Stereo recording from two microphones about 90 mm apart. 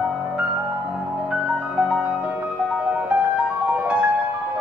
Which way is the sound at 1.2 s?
15° right (ahead or behind).